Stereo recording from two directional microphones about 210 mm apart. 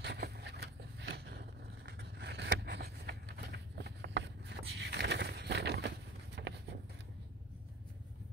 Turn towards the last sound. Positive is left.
turn(degrees=-55)  # may be behind; listen again after turning